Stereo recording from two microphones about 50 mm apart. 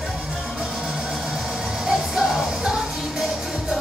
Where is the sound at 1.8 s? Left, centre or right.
Centre.